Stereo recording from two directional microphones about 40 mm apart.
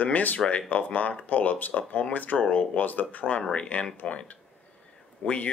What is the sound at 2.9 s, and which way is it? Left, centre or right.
Speech, left.